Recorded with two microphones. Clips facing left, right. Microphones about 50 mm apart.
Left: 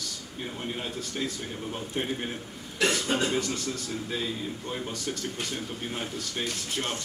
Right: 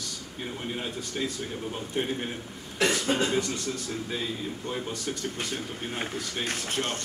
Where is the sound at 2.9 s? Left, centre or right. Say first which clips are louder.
Right 1 dB; centre.